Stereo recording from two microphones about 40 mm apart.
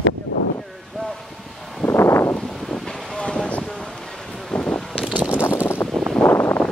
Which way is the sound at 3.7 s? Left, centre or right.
Centre.